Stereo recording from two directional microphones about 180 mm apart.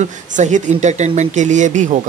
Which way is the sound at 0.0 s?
40° right (ahead or behind).